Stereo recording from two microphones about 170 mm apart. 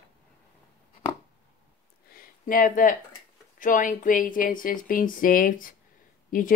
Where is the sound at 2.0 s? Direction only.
55° left (ahead or behind).